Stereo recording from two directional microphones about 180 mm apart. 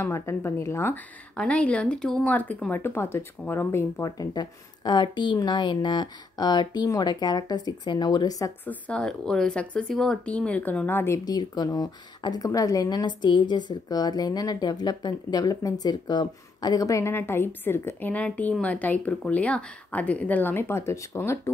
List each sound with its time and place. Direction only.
0.0 s speech: 15° left (ahead or behind)
8.6 s speech: 5° left (ahead or behind)